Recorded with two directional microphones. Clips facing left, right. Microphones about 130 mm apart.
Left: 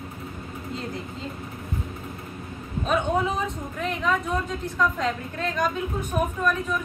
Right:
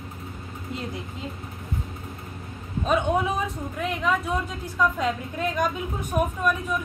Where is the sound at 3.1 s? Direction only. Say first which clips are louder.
Even; centre (ahead or behind).